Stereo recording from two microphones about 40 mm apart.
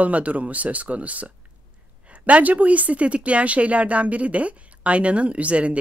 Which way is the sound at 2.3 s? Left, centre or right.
Right.